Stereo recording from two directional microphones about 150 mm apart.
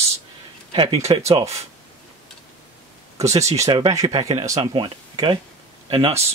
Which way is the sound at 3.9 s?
25° right (ahead or behind).